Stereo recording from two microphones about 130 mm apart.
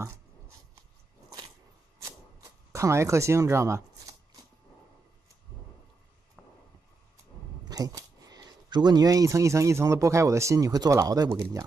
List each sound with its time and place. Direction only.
2.7 s speech: 20° right (ahead or behind)
7.6 s speech: 30° right (ahead or behind)